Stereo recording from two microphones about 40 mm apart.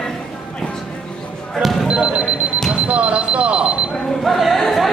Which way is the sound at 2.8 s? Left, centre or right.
Right.